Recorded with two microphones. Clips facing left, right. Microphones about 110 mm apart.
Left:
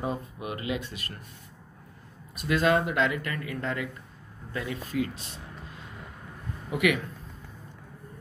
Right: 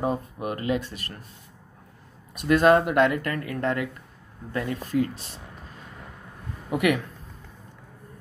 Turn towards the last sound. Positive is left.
turn(degrees=-50)  # may be behind; listen again after turning